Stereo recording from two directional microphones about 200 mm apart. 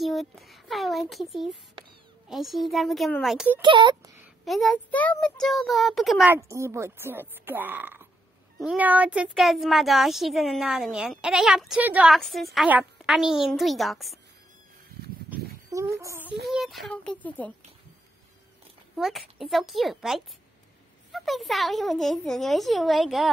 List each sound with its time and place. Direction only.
0.0 s a child's voice: centre (ahead or behind)
3.6 s speech: 25° right (ahead or behind)
4.5 s a child's voice: centre (ahead or behind)
6.3 s a child's voice: 15° right (ahead or behind)
16.0 s speech: 10° right (ahead or behind)
16.4 s a child's voice: centre (ahead or behind)
18.9 s a child's voice: centre (ahead or behind)